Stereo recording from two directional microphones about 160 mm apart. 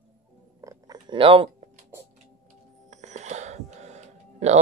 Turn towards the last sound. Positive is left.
turn(degrees=-45)  # may be behind; listen again after turning